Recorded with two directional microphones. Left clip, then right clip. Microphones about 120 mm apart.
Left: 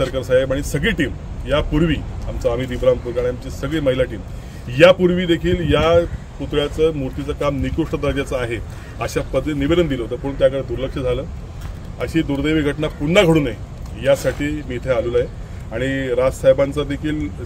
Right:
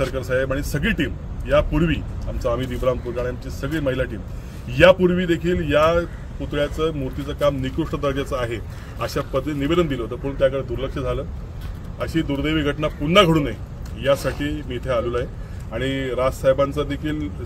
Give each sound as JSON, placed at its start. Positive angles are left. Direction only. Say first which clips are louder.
{"t": 0.1, "sound": "speech", "louder": "left 5 dB", "side_deg": 20}